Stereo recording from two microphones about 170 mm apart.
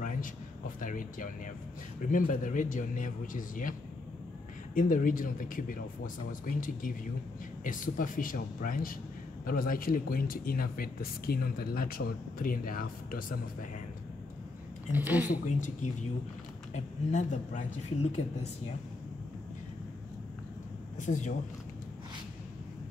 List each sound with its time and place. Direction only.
0.0 s a sound: 50° left (ahead or behind)
2.0 s a man's voice: 50° left (ahead or behind)
4.7 s a man's voice: 50° left (ahead or behind)
14.9 s a woman's voice: 10° right (ahead or behind)
15.3 s a man's voice: 45° left (ahead or behind)
21.0 s a man's voice: 45° left (ahead or behind)